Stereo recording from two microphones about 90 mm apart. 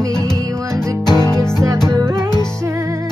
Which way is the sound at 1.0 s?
50° left (ahead or behind).